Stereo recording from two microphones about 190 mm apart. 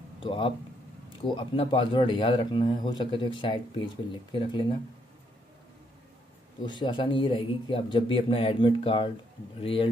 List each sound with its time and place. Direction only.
0.2 s speech: 30° left (ahead or behind)
6.6 s speech: 25° left (ahead or behind)